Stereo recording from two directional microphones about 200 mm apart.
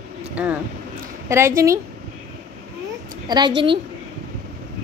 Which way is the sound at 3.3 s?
20° right (ahead or behind).